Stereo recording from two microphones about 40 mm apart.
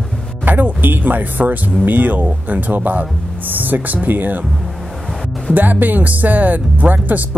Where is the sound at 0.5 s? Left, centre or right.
Right.